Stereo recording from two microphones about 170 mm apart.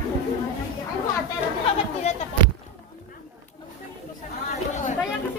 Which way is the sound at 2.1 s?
40° left (ahead or behind).